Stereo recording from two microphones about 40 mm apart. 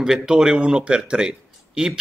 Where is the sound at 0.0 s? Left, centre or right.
Centre.